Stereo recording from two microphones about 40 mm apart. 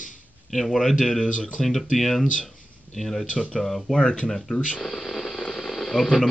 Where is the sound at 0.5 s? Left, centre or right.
Centre.